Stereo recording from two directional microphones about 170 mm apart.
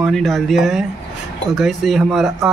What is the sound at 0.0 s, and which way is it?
Speech, centre (ahead or behind).